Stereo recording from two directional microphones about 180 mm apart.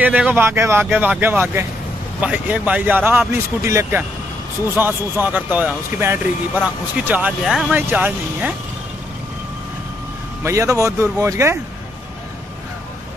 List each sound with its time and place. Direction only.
0.0 s speech: 10° right (ahead or behind)
10.4 s speech: 15° right (ahead or behind)